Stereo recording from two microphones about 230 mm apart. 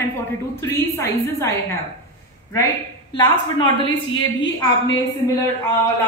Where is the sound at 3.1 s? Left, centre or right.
Centre.